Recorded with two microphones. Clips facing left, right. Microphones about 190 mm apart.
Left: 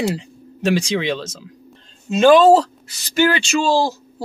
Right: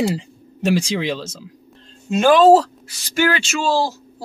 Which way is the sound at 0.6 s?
5° right (ahead or behind).